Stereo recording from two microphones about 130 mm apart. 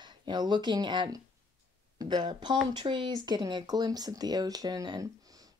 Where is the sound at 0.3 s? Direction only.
35° right (ahead or behind).